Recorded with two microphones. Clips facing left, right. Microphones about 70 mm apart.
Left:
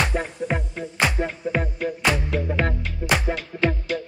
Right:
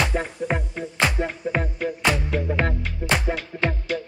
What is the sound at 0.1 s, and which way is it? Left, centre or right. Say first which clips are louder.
Music: even; centre.